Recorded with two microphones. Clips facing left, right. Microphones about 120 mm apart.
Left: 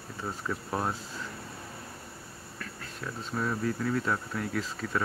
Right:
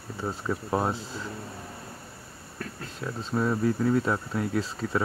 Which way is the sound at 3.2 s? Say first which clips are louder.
Right 6 dB; 20° right (ahead or behind).